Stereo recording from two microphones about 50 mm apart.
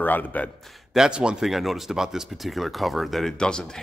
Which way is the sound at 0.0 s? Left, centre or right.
Left.